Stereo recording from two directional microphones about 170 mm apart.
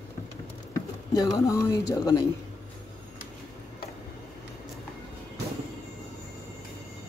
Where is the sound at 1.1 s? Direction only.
20° left (ahead or behind).